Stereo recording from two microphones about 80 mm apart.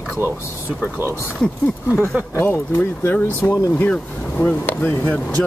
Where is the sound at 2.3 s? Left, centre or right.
Left.